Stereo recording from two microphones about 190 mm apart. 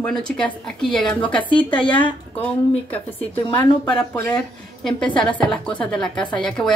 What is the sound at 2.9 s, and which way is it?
Speech, 10° left (ahead or behind).